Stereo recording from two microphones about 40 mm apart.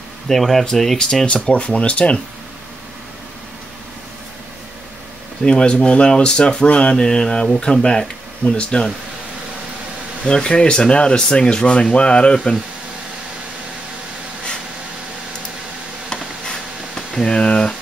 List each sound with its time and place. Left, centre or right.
0.3 s speech: centre
0.9 s speech: left
5.4 s speech: left
10.2 s speech: left
16.1 s a sound: centre